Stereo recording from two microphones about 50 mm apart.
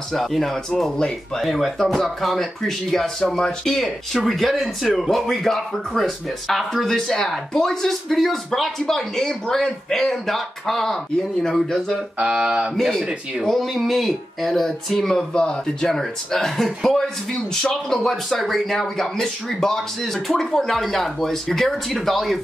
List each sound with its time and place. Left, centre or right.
0.1 s speech: centre
12.2 s mantra: centre
12.7 s speech: centre